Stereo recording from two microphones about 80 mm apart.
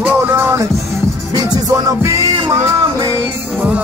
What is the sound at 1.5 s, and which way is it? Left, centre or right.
Music, right.